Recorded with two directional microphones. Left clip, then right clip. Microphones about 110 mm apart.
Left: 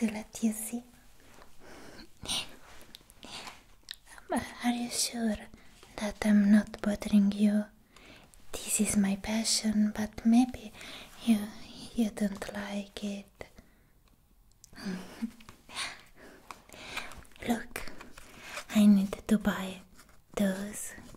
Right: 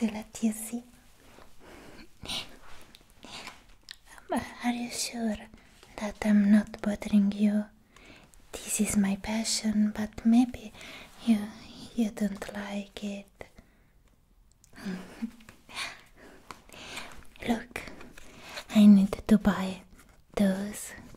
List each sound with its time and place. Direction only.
0.0 s speech: 15° right (ahead or behind)
2.0 s a sound: 5° right (ahead or behind)
3.9 s whispering: centre (ahead or behind)
5.9 s speech: centre (ahead or behind)
14.7 s a sound: 5° right (ahead or behind)
15.7 s sniff: centre (ahead or behind)
16.7 s a sound: 20° right (ahead or behind)
17.7 s whispering: 35° right (ahead or behind)
18.2 s speech: 35° right (ahead or behind)
20.3 s speech: 30° right (ahead or behind)